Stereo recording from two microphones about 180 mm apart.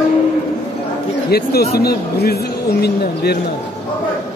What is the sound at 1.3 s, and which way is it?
Speech, 60° left (ahead or behind).